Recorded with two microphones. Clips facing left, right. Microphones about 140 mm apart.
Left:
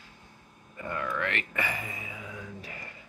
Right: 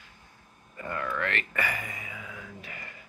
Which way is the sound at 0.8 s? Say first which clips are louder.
Even; 15° left (ahead or behind).